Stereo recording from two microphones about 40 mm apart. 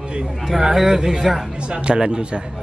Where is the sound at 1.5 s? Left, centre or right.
Right.